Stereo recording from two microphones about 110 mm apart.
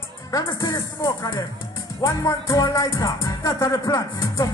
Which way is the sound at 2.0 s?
30° left (ahead or behind).